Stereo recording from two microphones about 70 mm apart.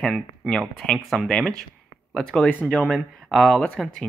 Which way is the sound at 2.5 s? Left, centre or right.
Left.